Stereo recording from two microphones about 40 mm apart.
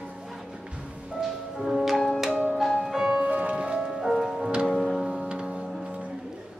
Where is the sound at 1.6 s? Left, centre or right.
Centre.